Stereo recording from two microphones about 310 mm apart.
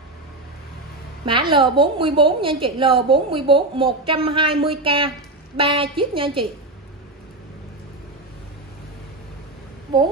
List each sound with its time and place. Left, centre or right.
1.2 s a woman's voice: centre